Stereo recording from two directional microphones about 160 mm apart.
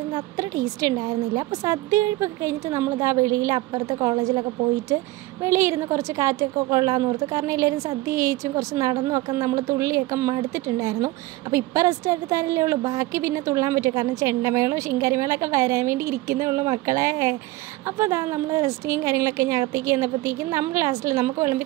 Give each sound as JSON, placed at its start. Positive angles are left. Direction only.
{"t": 0.7, "sound": "a woman's voice", "side_deg": -25}